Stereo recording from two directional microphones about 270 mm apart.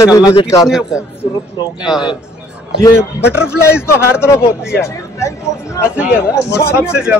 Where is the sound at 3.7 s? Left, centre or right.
Centre.